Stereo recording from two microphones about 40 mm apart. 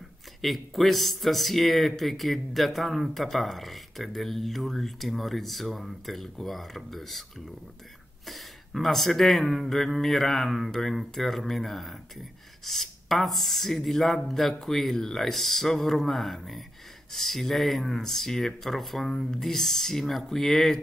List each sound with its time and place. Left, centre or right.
0.4 s speech: centre